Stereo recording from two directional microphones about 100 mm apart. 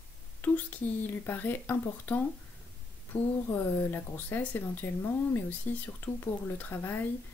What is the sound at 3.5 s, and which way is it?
Speech, 20° left (ahead or behind).